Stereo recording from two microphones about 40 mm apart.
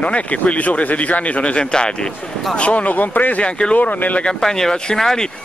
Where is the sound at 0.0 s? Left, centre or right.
Left.